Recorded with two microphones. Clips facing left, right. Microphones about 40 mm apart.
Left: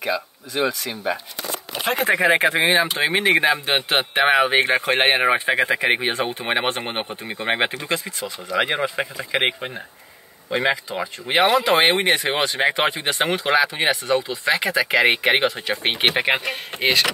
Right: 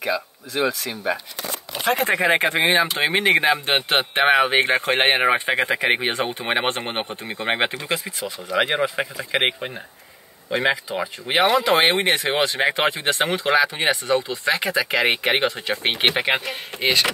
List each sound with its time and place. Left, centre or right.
0.0 s speech: centre
7.9 s speech: centre
11.4 s speech: centre
16.7 s speech: left